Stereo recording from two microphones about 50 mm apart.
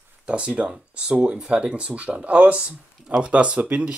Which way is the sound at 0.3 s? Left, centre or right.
Right.